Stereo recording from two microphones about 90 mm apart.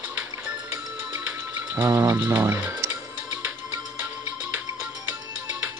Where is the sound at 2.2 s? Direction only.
25° right (ahead or behind).